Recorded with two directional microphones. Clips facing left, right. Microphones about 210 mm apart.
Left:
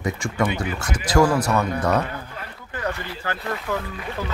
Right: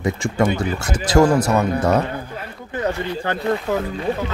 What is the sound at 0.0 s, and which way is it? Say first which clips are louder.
Speech: right 4 dB; 25° right (ahead or behind).